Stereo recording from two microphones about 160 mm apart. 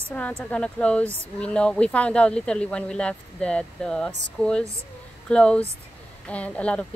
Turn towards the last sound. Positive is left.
turn(degrees=10)  # may be behind; listen again after turning